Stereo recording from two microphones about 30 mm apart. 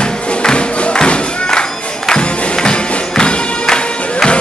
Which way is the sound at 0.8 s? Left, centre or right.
Left.